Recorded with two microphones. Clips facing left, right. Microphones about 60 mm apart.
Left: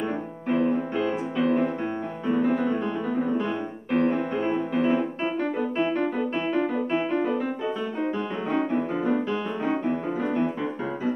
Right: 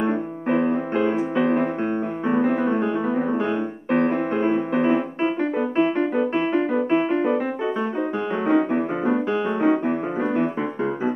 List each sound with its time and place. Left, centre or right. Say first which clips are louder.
0.0 s music: right 6 dB; right
4.2 s piano: right 4 dB; right
8.5 s music: right 6 dB; right